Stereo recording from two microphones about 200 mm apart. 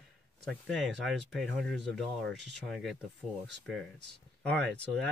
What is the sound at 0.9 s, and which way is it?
Speech, centre (ahead or behind).